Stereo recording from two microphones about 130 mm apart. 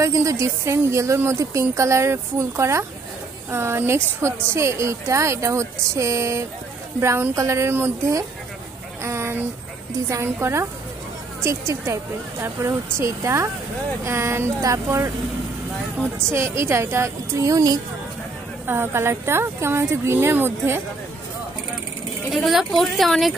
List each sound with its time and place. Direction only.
0.0 s a woman's voice: 25° right (ahead or behind)
9.0 s a sound: 20° right (ahead or behind)
10.0 s a woman's voice: 20° right (ahead or behind)
16.3 s a woman's voice: 20° right (ahead or behind)
22.3 s a woman's voice: centre (ahead or behind)